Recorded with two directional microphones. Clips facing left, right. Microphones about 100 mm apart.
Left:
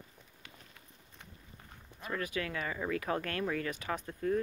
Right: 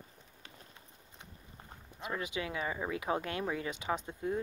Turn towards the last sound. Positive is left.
turn(degrees=-20)  # may be behind; listen again after turning